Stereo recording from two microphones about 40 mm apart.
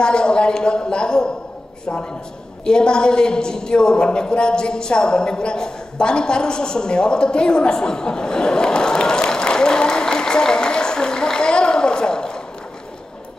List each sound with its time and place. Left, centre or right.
0.0 s a woman's voice: left
2.6 s a woman's voice: left